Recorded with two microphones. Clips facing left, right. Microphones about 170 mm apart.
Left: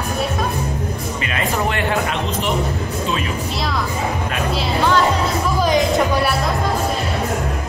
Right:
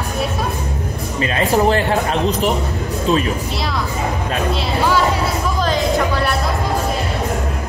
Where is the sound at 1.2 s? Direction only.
35° right (ahead or behind).